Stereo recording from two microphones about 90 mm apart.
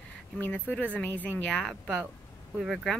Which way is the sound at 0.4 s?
20° left (ahead or behind).